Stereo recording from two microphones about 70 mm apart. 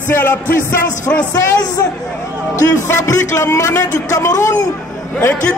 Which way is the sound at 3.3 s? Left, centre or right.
Left.